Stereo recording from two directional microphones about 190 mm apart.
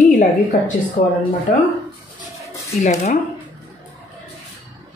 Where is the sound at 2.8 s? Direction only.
35° left (ahead or behind).